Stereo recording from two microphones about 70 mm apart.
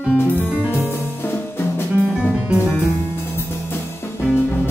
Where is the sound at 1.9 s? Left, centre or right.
Centre.